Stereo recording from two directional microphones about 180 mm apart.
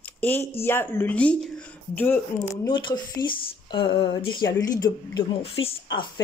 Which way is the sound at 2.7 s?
25° left (ahead or behind).